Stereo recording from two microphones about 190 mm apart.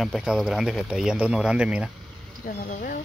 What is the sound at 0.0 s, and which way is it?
Speech, centre (ahead or behind).